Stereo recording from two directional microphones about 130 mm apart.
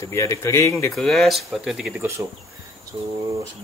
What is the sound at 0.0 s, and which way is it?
Speech, 20° left (ahead or behind).